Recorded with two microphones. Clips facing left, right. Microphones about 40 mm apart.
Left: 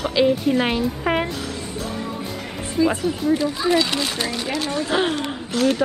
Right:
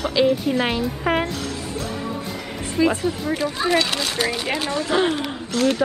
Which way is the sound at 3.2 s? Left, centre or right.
Centre.